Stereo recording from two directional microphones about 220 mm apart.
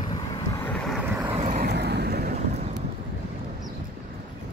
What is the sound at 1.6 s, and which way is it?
Vehicle, 50° right (ahead or behind).